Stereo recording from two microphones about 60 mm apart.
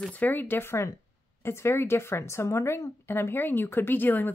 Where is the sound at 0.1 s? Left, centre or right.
Left.